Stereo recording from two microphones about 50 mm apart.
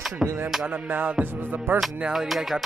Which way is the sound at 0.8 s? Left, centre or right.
Right.